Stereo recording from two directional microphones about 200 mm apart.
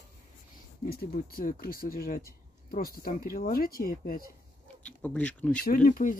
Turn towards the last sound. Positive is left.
turn(degrees=45)  # may be behind; listen again after turning